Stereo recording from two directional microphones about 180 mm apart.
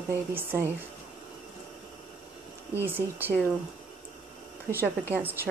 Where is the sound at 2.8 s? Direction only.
10° right (ahead or behind).